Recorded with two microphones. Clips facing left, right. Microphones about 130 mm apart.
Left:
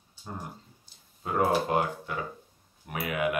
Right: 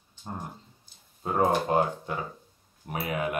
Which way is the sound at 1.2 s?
35° right (ahead or behind).